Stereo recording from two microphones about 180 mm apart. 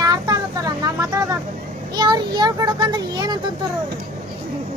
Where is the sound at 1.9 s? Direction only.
25° right (ahead or behind).